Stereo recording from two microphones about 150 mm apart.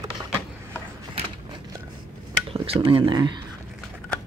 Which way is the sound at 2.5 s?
35° right (ahead or behind).